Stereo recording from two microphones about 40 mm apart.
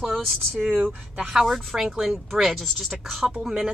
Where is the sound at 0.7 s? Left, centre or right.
Right.